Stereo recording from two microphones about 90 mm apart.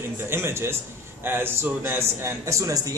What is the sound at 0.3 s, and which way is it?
A man's voice, 30° right (ahead or behind).